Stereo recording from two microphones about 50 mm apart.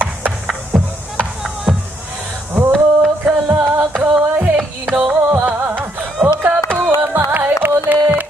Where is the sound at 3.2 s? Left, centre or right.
Right.